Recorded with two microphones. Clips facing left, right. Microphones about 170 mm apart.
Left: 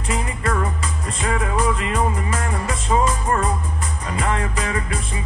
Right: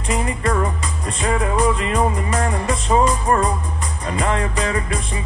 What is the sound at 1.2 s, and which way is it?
Music, 30° right (ahead or behind).